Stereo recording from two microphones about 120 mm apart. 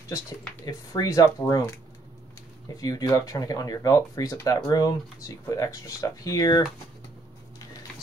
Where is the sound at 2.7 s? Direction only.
30° left (ahead or behind).